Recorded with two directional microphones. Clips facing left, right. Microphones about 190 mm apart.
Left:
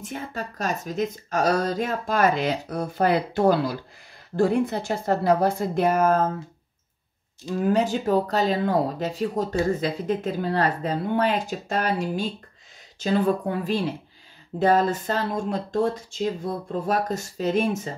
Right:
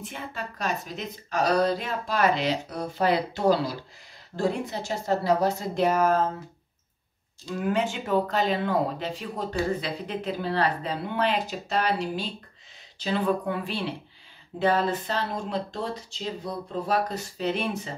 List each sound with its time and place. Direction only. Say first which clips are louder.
0.0 s a woman's voice: left 4 dB; 45° left (ahead or behind)
7.5 s speech: left 5 dB; 40° left (ahead or behind)